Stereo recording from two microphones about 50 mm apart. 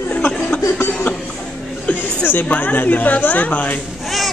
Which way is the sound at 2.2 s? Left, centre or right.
Left.